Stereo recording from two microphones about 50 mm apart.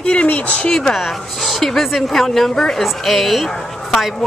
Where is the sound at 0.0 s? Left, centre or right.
Left.